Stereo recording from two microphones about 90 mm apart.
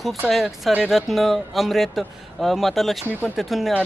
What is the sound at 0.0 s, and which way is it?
Speech, centre (ahead or behind).